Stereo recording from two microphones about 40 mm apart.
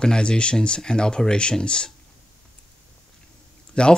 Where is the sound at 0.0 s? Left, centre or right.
Left.